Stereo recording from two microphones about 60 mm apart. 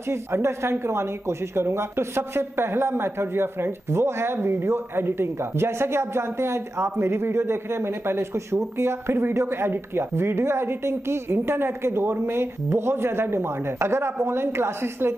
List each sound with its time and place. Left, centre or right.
0.1 s speech: right